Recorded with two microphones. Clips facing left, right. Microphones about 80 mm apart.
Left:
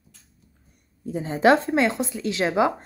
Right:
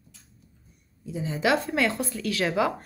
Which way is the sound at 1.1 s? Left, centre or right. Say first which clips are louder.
Left 6 dB; left.